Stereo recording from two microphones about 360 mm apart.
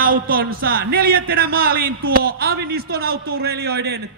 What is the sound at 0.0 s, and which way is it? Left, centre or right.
A man's voice, right.